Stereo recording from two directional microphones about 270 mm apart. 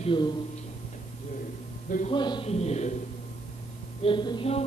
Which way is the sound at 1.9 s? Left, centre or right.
Left.